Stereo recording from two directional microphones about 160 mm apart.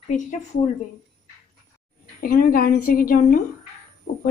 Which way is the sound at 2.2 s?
60° left (ahead or behind).